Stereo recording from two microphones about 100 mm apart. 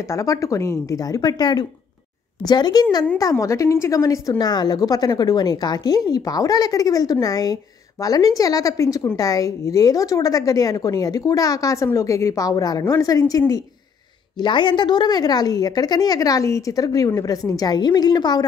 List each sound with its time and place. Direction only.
0.1 s a woman's voice: 35° left (ahead or behind)
14.4 s a woman's voice: 50° left (ahead or behind)